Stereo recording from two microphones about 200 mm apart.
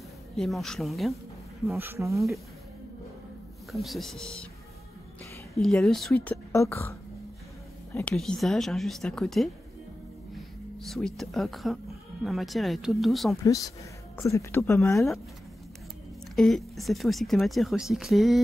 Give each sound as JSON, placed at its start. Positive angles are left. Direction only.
{"t": 0.4, "sound": "speech", "side_deg": 0}
{"t": 1.8, "sound": "speech", "side_deg": -15}
{"t": 3.7, "sound": "speech", "side_deg": 0}
{"t": 5.5, "sound": "a woman's voice", "side_deg": 0}
{"t": 14.1, "sound": "a woman's voice", "side_deg": 15}
{"t": 16.3, "sound": "speech", "side_deg": 0}